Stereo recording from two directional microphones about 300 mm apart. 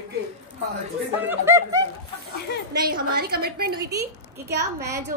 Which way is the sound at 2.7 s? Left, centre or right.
Right.